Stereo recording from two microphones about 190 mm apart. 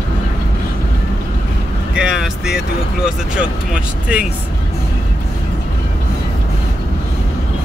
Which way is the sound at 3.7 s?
5° right (ahead or behind).